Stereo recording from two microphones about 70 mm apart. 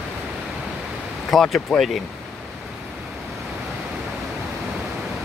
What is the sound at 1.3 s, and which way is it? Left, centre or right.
Speech, centre.